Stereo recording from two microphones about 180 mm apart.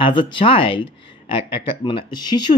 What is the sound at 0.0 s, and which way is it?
Speech, 30° left (ahead or behind).